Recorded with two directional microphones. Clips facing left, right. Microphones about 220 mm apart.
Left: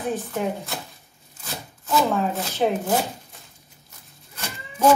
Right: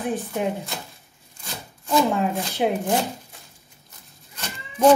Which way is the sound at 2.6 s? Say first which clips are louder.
Left 1 dB; 10° right (ahead or behind).